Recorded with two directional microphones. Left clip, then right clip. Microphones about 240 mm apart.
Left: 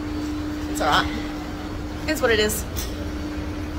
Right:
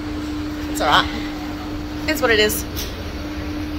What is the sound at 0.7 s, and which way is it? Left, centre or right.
Speech, centre.